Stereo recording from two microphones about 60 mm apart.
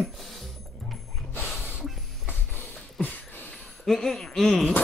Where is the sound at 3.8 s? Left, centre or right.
Centre.